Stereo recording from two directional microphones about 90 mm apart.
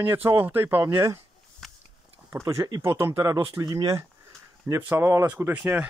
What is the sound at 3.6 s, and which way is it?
Speech, 50° right (ahead or behind).